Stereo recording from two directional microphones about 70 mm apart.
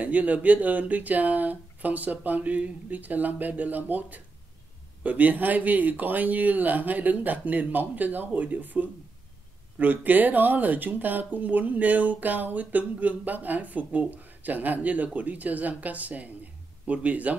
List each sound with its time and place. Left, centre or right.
0.0 s speech: right